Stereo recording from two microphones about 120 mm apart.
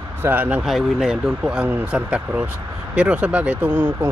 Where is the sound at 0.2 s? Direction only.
15° right (ahead or behind).